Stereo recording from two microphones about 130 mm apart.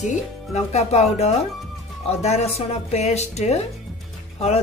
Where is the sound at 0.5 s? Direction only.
55° left (ahead or behind).